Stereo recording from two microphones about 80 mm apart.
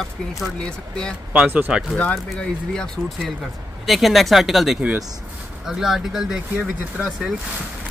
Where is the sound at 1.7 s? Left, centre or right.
Centre.